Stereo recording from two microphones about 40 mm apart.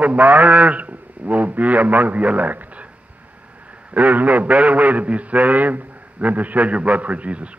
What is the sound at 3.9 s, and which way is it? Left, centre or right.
A man's voice, right.